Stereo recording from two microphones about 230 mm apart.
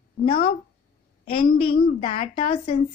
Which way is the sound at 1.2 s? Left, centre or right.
Left.